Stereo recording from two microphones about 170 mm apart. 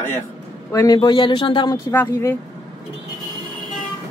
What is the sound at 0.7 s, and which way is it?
Speech, 20° left (ahead or behind).